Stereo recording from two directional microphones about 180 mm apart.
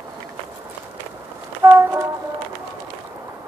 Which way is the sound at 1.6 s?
15° right (ahead or behind).